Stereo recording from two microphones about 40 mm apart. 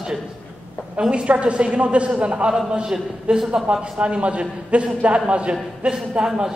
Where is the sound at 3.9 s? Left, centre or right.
Right.